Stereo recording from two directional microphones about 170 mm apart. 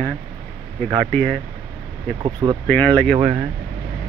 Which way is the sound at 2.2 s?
30° right (ahead or behind).